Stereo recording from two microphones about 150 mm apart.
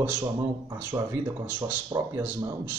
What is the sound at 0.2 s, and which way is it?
Speech, 20° right (ahead or behind).